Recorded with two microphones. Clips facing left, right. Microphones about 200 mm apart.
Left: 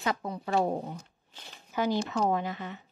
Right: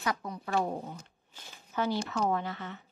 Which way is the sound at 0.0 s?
25° left (ahead or behind).